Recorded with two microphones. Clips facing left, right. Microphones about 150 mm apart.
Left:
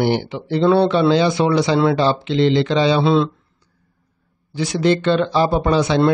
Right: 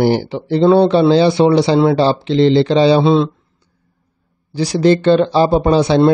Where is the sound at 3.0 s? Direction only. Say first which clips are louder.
Right 3 dB; 20° right (ahead or behind).